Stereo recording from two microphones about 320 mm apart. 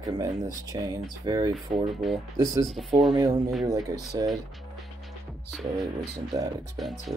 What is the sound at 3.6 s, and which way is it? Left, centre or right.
Speech, centre.